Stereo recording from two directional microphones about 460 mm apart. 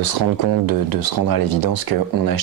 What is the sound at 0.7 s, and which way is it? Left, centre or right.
Speech, right.